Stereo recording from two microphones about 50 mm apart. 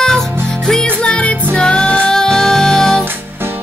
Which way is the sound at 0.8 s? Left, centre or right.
Left.